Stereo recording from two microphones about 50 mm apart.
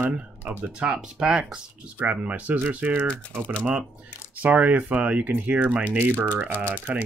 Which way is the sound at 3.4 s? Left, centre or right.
Left.